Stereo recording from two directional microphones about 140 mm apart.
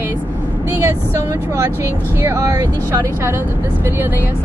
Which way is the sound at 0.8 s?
20° right (ahead or behind).